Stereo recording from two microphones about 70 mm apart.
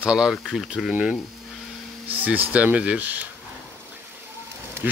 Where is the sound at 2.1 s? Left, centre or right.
Right.